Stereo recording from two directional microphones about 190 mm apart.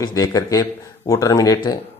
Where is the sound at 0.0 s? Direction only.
20° left (ahead or behind).